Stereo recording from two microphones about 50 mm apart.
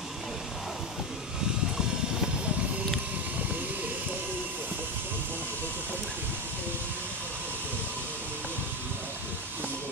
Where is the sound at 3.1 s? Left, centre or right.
Right.